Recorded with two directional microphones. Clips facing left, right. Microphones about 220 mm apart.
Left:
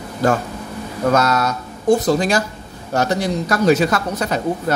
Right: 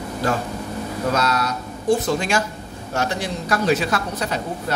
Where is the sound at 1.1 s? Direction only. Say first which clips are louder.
Left 5 dB; 45° left (ahead or behind).